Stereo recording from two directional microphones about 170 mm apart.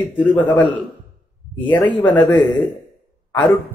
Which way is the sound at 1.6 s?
10° left (ahead or behind).